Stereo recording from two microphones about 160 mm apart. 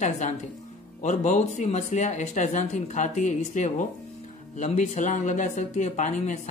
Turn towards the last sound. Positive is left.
turn(degrees=50)  # may be behind; listen again after turning